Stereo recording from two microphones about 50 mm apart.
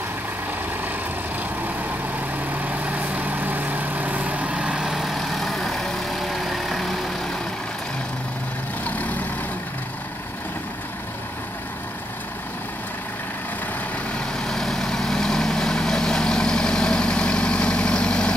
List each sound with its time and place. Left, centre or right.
2.6 s vehicle: right
4.9 s vehicle: centre
8.8 s vehicle: left
14.1 s vehicle: centre